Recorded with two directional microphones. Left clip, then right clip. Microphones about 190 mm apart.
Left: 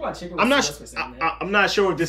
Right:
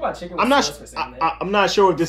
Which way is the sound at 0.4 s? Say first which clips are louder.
Right 2 dB; 5° right (ahead or behind).